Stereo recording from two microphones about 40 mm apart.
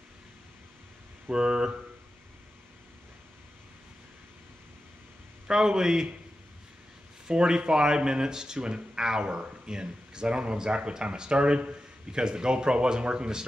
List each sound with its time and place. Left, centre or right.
1.3 s speech: centre
5.5 s speech: centre
7.2 s speech: centre